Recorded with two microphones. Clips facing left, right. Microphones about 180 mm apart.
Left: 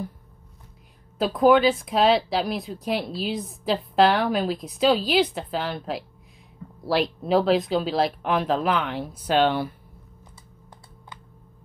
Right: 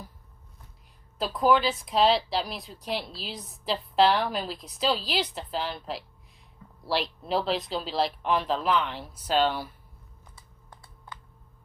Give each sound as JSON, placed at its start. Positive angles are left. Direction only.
{"t": 1.1, "sound": "a woman's voice", "side_deg": 55}
{"t": 7.2, "sound": "speech", "side_deg": 50}